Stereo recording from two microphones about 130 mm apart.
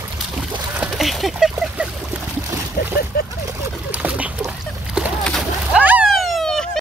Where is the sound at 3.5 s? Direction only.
25° right (ahead or behind).